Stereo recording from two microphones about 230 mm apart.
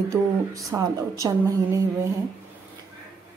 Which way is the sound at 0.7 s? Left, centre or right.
Centre.